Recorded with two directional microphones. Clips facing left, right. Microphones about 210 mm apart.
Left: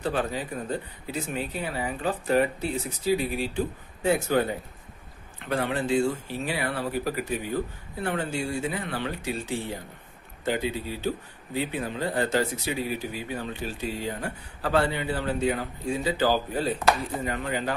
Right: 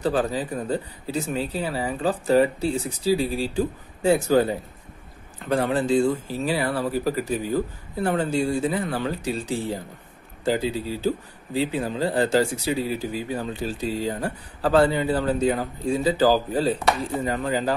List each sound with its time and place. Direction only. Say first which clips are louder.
0.0 s speech: right 5 dB; 35° right (ahead or behind)